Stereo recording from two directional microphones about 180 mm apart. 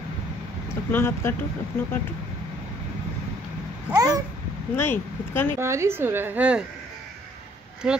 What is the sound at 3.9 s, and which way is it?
Babbling, 20° right (ahead or behind).